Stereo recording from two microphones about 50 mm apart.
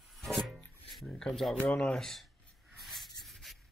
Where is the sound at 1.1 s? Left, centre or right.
Centre.